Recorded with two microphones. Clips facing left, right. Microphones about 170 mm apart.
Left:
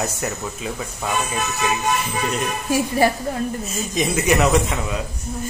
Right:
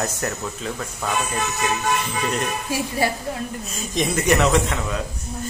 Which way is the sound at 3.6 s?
5° left (ahead or behind).